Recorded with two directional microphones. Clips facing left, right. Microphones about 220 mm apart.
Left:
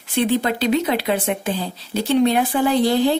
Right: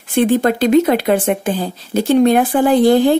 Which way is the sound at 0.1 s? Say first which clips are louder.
Right 6 dB; 50° right (ahead or behind).